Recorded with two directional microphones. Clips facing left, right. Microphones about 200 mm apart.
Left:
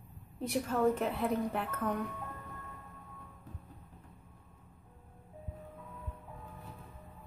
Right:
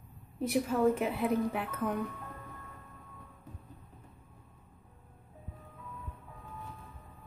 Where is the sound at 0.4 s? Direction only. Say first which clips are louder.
Right 3 dB; 5° right (ahead or behind).